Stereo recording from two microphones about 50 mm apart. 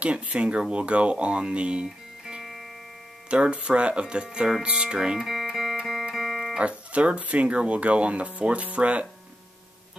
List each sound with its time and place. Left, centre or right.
0.0 s speech: right
5.2 s music: centre
6.6 s speech: right